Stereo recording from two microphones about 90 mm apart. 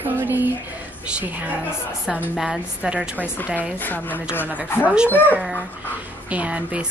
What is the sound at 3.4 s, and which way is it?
Speech, 15° right (ahead or behind).